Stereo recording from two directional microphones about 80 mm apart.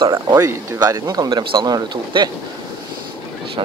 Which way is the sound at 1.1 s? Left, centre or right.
Right.